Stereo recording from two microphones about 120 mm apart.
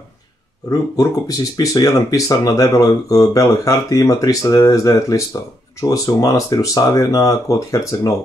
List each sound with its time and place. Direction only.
0.7 s speech: 30° left (ahead or behind)